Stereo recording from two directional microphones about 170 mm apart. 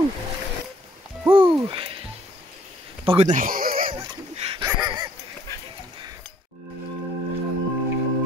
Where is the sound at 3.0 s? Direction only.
35° right (ahead or behind).